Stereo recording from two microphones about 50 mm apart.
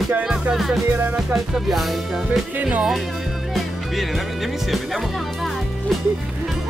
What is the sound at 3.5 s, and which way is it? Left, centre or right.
Speech, centre.